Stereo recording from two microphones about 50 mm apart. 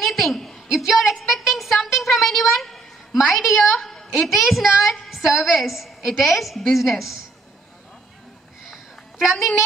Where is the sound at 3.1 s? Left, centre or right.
Centre.